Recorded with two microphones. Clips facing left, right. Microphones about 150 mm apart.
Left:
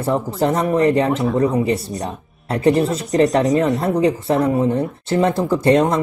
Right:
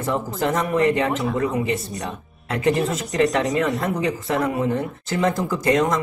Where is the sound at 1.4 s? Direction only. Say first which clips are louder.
Left 5 dB; 35° left (ahead or behind).